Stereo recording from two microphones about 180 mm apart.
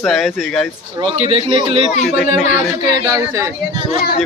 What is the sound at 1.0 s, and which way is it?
Speech, 30° right (ahead or behind).